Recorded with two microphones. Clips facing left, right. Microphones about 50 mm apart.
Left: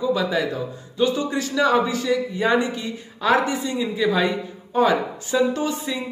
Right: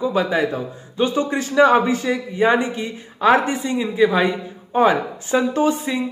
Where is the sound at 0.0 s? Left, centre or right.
Right.